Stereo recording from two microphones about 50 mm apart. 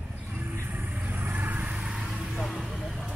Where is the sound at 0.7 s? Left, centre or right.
Right.